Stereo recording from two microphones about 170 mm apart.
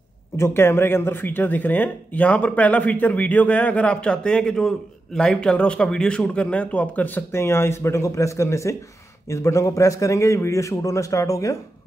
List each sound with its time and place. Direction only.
0.4 s speech: 15° left (ahead or behind)